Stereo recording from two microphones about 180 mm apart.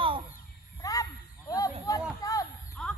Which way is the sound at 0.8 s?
20° left (ahead or behind).